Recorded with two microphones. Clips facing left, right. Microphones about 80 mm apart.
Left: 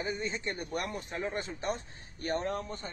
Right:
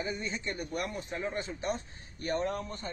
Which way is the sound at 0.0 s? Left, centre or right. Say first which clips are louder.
Left 1 dB; left.